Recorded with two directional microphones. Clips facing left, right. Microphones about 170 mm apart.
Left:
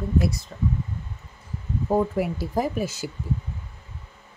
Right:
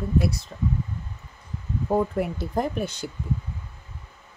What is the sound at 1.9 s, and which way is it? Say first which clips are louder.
Speech: left 1 dB; centre (ahead or behind).